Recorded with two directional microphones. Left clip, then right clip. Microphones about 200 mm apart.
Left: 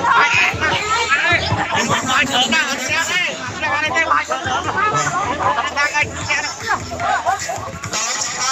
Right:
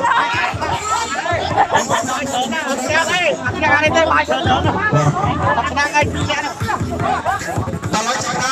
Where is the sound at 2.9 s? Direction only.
55° right (ahead or behind).